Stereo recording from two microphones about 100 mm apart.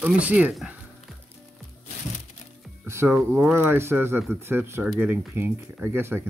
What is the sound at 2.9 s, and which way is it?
Speech, 25° right (ahead or behind).